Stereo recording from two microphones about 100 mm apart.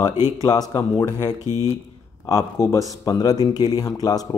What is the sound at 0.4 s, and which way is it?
Speech, 40° left (ahead or behind).